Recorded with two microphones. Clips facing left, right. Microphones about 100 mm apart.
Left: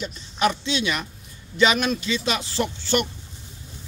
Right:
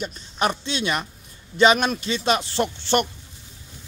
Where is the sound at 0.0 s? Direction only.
45° right (ahead or behind).